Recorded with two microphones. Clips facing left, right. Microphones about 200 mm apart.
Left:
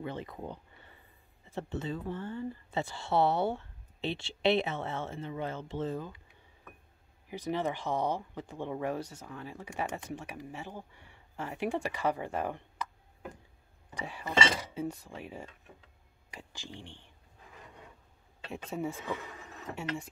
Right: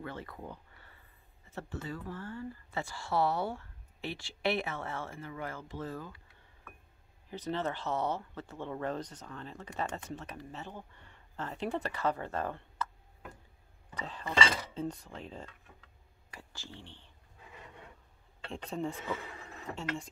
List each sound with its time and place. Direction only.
0.0 s speech: 20° left (ahead or behind)
13.8 s speech: 10° left (ahead or behind)
18.5 s speech: 5° left (ahead or behind)